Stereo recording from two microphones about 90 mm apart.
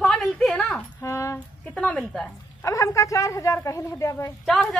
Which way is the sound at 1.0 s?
35° left (ahead or behind).